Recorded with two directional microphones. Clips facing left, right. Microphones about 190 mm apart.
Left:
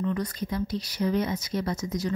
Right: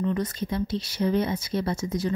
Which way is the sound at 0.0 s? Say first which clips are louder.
Right 2 dB; 25° right (ahead or behind).